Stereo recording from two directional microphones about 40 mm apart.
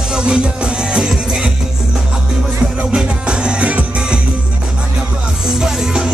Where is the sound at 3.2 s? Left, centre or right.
Right.